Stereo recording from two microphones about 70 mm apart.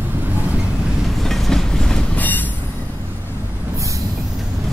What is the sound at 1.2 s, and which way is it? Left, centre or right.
Train, centre.